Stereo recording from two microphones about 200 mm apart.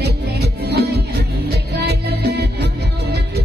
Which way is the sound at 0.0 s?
55° right (ahead or behind).